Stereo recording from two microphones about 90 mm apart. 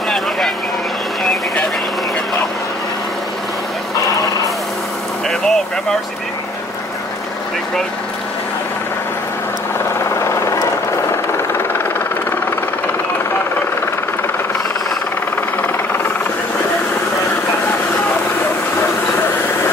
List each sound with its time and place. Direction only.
5.3 s speech: 5° left (ahead or behind)
11.1 s vehicle: 25° left (ahead or behind)